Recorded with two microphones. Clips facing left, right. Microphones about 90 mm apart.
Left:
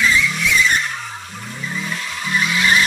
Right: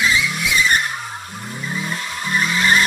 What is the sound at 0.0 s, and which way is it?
Vehicle, 10° right (ahead or behind).